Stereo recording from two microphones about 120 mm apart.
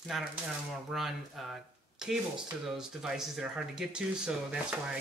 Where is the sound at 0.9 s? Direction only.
Centre (ahead or behind).